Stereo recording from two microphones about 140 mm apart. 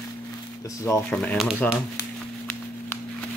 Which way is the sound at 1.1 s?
5° left (ahead or behind).